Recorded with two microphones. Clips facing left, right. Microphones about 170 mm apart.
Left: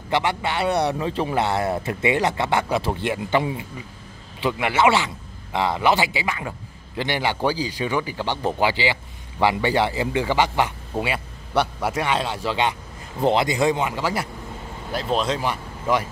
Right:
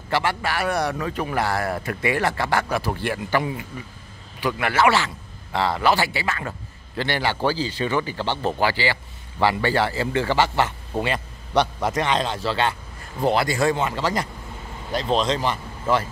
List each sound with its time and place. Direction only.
0.1 s a man's voice: 20° left (ahead or behind)